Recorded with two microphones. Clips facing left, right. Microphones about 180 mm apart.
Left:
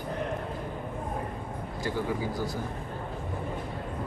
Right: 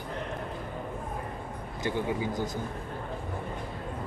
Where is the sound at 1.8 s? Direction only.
20° right (ahead or behind).